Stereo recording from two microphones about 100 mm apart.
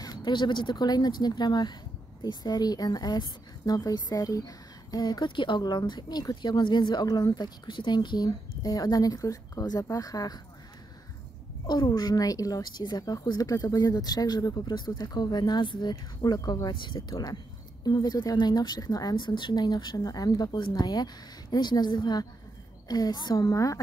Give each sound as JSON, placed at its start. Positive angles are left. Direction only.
{"t": 0.0, "sound": "a woman's voice", "side_deg": 45}
{"t": 11.6, "sound": "a woman's voice", "side_deg": 45}